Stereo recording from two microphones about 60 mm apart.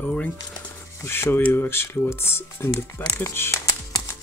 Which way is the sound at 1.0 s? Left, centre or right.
Left.